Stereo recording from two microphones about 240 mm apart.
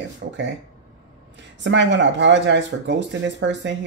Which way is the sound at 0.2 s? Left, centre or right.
Right.